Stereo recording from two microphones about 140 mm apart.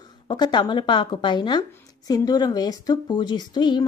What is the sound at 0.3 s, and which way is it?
Speech, 30° left (ahead or behind).